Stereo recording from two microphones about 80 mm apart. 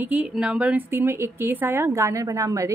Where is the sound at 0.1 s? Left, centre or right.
Centre.